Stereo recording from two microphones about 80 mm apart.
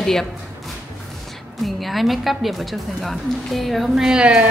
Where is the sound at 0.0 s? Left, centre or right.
Centre.